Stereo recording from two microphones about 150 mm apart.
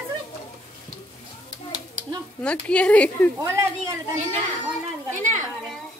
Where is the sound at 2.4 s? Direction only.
10° left (ahead or behind).